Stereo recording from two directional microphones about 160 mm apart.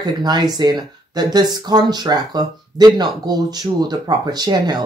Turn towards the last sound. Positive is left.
turn(degrees=-25)  # may be behind; listen again after turning